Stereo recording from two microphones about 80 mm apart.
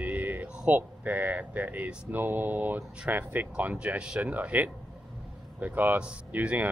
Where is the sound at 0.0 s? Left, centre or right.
Centre.